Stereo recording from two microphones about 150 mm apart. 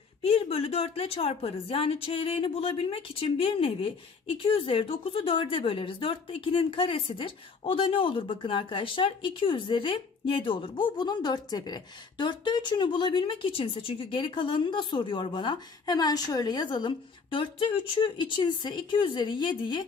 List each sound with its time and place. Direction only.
0.2 s a woman's voice: 40° left (ahead or behind)